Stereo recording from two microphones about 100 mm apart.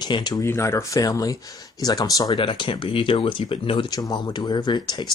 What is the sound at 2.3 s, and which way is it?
Speech, 60° left (ahead or behind).